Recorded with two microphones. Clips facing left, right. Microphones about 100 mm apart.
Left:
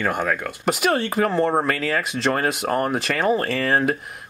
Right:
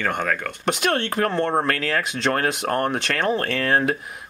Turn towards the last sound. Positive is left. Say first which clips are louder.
# even
turn(degrees=0)  # may be behind; listen again after turning